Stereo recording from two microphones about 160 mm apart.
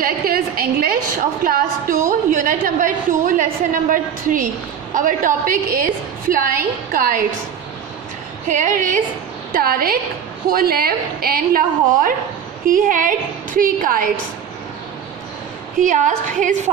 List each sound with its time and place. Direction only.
0.0 s a sound: 70° right (ahead or behind)
1.4 s a woman's voice: 60° right (ahead or behind)
8.5 s a woman's voice: 55° right (ahead or behind)
9.5 s a woman's voice: 65° right (ahead or behind)
15.8 s a woman's voice: 55° right (ahead or behind)